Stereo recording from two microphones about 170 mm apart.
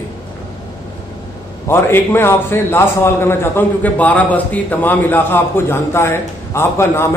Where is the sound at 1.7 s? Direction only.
15° left (ahead or behind).